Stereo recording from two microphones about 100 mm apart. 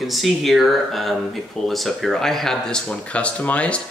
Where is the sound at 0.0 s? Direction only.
Centre (ahead or behind).